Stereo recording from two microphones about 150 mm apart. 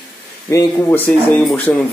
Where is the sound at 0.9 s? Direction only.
10° left (ahead or behind).